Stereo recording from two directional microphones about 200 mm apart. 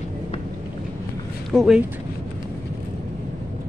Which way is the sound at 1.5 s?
Centre (ahead or behind).